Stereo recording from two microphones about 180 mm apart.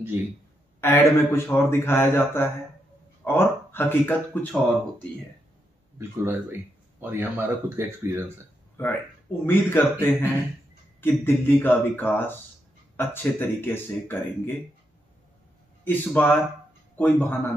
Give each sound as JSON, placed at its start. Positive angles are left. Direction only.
{"t": 0.7, "sound": "speech", "side_deg": 15}
{"t": 5.9, "sound": "speech", "side_deg": -10}
{"t": 9.5, "sound": "speech", "side_deg": 15}
{"t": 15.8, "sound": "speech", "side_deg": 10}